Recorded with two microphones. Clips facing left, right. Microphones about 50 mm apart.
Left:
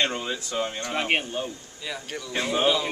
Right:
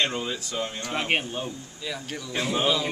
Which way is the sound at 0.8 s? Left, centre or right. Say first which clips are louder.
Right 1 dB; centre.